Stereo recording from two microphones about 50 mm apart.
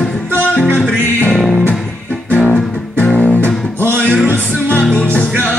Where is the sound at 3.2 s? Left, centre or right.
Left.